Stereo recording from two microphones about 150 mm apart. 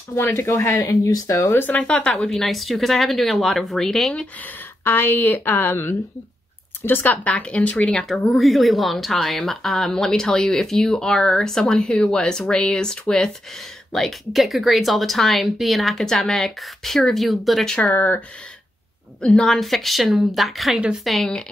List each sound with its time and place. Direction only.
0.1 s a woman's voice: 15° left (ahead or behind)
19.2 s speech: 5° left (ahead or behind)